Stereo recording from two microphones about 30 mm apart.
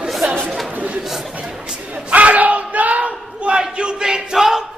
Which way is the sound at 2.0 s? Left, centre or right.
Right.